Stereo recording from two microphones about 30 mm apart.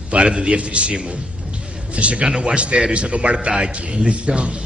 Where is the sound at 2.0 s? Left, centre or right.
Right.